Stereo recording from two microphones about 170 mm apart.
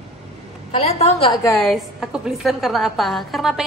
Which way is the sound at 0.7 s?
40° left (ahead or behind).